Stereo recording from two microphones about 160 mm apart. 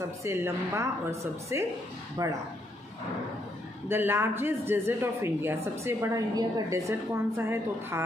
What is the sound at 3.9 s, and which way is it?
Speech, 15° right (ahead or behind).